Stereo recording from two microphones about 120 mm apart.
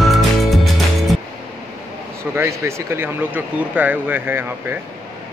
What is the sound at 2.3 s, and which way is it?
Speech, 20° right (ahead or behind).